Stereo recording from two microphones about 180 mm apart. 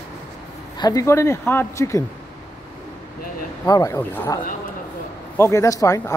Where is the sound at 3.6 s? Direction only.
20° left (ahead or behind).